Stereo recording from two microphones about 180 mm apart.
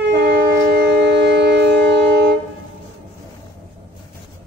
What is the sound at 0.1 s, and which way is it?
Wind instrument, 65° right (ahead or behind).